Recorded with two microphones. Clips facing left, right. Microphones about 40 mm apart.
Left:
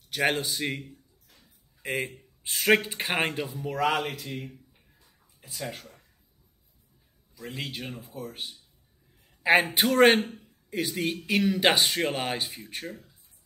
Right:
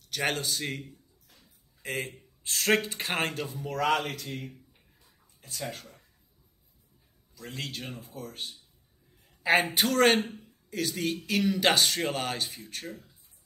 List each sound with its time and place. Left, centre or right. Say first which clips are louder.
0.1 s speech: left 3 dB; centre
5.0 s a sound: left 1 dB; centre
7.3 s a woman's voice: left 2 dB; centre